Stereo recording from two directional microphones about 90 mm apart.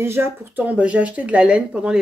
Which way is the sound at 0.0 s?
30° right (ahead or behind).